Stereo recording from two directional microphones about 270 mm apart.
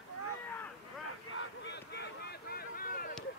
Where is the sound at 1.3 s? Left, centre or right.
Left.